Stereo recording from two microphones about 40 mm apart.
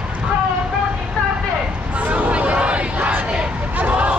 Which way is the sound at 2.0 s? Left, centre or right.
Right.